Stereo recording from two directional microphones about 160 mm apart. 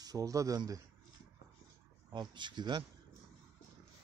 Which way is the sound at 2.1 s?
30° right (ahead or behind).